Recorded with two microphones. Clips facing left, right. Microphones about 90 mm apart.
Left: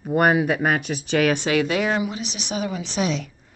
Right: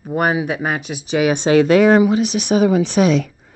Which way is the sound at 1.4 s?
30° right (ahead or behind).